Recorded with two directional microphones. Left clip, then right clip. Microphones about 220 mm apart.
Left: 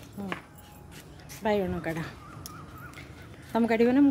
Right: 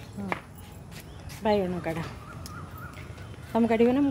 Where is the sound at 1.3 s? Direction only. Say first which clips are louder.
Right 2 dB; 25° left (ahead or behind).